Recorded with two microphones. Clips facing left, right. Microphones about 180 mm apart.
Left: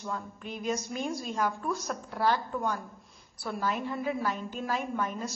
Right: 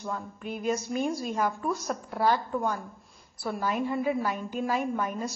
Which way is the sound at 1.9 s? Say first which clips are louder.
Right 2 dB; 10° right (ahead or behind).